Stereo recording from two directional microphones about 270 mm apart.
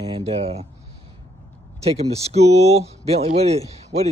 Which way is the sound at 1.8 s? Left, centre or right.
Right.